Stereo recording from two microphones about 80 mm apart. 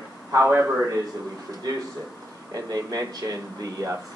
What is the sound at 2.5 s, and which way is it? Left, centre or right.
Speech, right.